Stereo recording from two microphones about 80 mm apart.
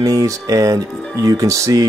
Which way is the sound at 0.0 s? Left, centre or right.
Right.